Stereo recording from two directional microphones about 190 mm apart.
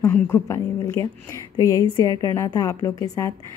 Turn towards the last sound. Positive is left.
turn(degrees=15)  # may be behind; listen again after turning